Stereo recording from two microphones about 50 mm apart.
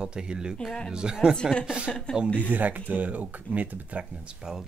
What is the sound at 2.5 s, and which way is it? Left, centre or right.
Speech, right.